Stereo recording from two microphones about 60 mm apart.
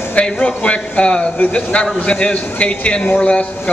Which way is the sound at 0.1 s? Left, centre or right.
Centre.